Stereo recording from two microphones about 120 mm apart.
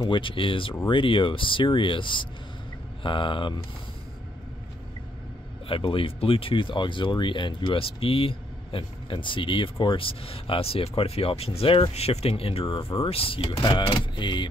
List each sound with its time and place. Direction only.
0.0 s speech: 45° left (ahead or behind)
5.7 s speech: 45° left (ahead or behind)